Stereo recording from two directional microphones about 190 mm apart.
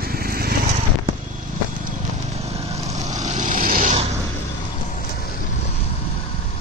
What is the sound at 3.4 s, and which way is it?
Vehicle, 45° right (ahead or behind).